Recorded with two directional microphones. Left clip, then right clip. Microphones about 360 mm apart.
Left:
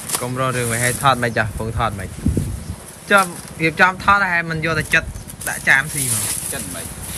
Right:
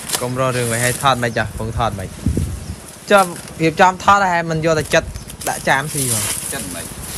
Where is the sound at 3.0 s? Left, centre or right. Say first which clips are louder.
Right 2 dB; centre.